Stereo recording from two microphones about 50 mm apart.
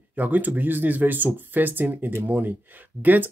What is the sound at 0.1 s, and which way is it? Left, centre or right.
Speech, right.